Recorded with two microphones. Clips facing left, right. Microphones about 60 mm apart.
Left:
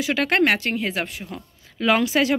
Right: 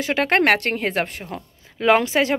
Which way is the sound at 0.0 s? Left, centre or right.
Right.